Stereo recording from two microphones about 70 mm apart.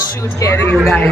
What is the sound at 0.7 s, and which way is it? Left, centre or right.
Speech, centre.